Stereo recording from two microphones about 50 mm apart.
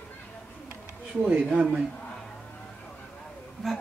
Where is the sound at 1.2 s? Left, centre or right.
Right.